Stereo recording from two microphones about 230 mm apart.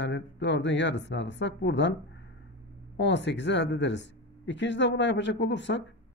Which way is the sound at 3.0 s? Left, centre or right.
Left.